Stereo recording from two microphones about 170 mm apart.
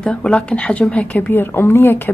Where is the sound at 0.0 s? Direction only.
5° left (ahead or behind).